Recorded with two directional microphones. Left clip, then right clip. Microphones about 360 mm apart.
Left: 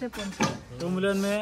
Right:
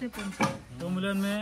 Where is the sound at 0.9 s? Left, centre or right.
Left.